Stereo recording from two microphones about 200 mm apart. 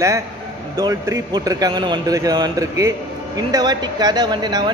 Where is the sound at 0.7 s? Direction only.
15° right (ahead or behind).